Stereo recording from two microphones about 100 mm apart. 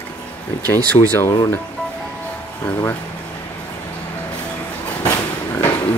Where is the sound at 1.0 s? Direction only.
65° left (ahead or behind).